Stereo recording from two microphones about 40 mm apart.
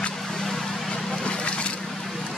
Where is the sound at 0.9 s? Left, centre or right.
Left.